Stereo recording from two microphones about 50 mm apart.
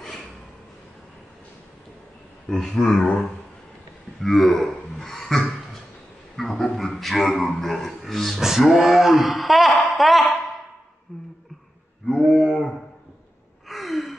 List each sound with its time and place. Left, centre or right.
2.4 s speech: centre
4.2 s a man's voice: centre
6.4 s a sound: centre
6.7 s a man's voice: centre
12.2 s a sound: right
13.7 s gasp: centre